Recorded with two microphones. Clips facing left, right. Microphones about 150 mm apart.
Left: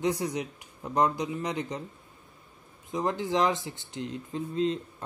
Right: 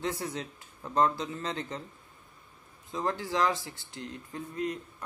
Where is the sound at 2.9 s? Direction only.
20° left (ahead or behind).